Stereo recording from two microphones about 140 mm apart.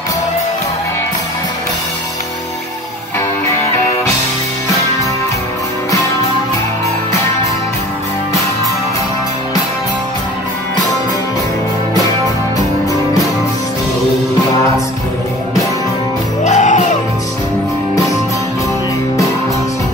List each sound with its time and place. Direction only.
16.4 s music: 60° left (ahead or behind)